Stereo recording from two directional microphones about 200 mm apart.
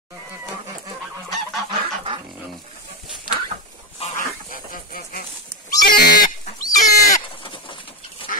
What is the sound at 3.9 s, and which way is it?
Goose, 35° left (ahead or behind).